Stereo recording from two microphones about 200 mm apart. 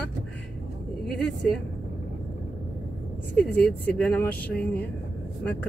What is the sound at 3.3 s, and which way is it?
Speech, 5° left (ahead or behind).